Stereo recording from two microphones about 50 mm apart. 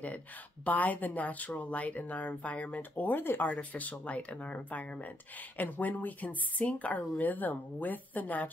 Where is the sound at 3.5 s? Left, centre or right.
Left.